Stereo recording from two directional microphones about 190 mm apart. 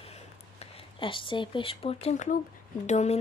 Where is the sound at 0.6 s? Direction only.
30° left (ahead or behind).